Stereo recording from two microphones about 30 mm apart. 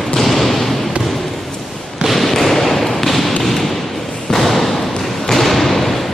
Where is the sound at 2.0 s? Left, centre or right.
Centre.